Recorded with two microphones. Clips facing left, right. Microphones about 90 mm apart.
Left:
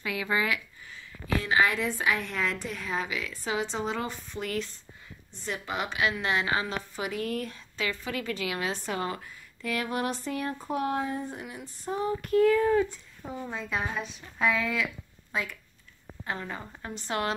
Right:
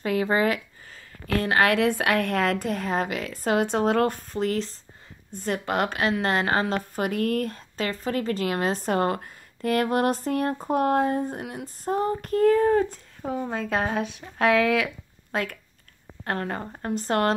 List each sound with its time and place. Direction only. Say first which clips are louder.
0.0 s speech: right 7 dB; 40° right (ahead or behind)
1.2 s a woman's voice: right 4 dB; 60° right (ahead or behind)
4.3 s speech: right 7 dB; 35° right (ahead or behind)
5.3 s a woman's voice: right 7 dB; 50° right (ahead or behind)
13.3 s a woman's voice: right 7 dB; 55° right (ahead or behind)
14.4 s speech: right 7 dB; 70° right (ahead or behind)
15.3 s a woman's voice: right 5 dB; 55° right (ahead or behind)
16.8 s a woman's voice: right 8 dB; 45° right (ahead or behind)